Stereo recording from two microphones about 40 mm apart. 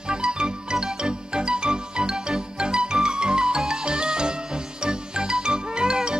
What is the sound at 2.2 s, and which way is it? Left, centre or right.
Music, centre.